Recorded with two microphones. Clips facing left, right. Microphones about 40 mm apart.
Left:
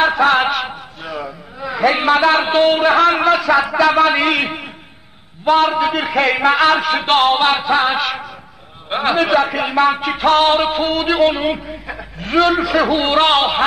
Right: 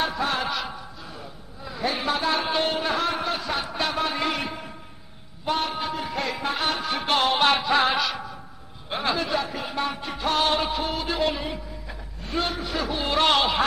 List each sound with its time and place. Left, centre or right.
0.0 s music: left
1.0 s a man's voice: left
7.3 s music: left
8.8 s a man's voice: left
9.2 s music: left
13.0 s a man's voice: left